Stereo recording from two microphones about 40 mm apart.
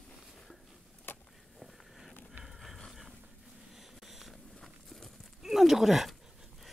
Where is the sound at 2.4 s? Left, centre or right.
Centre.